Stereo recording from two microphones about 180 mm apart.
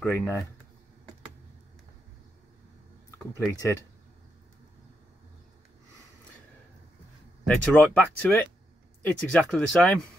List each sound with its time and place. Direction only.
0.0 s speech: 5° left (ahead or behind)
3.3 s speech: 15° left (ahead or behind)
7.4 s speech: 5° left (ahead or behind)